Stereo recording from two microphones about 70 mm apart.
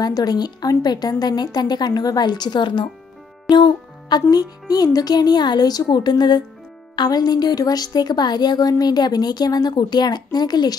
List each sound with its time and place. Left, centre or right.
0.0 s speech: left
4.3 s speech: left
7.0 s speech: left